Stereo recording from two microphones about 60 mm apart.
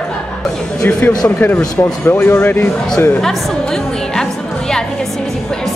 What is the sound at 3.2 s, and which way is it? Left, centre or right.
Music, centre.